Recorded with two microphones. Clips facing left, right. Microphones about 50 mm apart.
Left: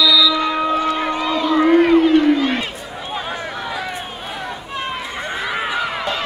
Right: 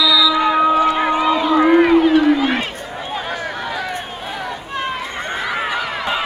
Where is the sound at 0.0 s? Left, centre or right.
Centre.